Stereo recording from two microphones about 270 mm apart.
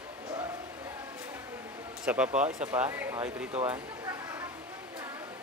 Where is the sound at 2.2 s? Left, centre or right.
Right.